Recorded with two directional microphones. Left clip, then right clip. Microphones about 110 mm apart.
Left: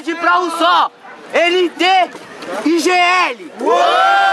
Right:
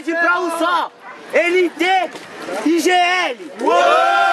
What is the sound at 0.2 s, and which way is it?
A man's voice, 15° left (ahead or behind).